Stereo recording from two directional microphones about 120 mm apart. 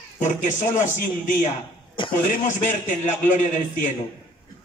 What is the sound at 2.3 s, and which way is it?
Speech, 90° left.